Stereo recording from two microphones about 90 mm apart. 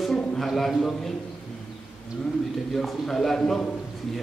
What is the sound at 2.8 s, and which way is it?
Speech, centre (ahead or behind).